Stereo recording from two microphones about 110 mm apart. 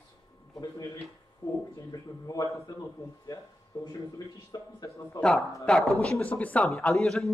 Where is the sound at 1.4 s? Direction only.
30° left (ahead or behind).